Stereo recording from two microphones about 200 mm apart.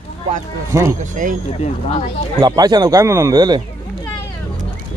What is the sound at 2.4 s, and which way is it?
A man's voice, 20° right (ahead or behind).